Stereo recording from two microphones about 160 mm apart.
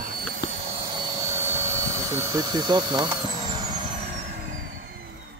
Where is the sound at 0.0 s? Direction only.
60° right (ahead or behind).